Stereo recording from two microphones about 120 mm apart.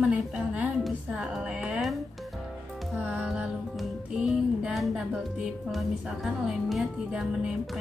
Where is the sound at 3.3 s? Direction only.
Centre (ahead or behind).